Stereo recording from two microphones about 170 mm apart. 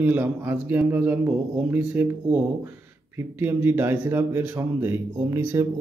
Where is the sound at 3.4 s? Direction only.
10° right (ahead or behind).